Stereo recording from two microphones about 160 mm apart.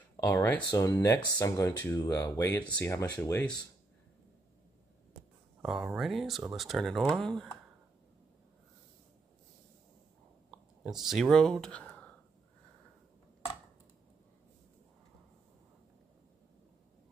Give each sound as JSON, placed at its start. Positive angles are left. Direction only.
{"t": 0.2, "sound": "speech", "side_deg": 15}
{"t": 5.6, "sound": "speech", "side_deg": -5}
{"t": 10.8, "sound": "speech", "side_deg": -5}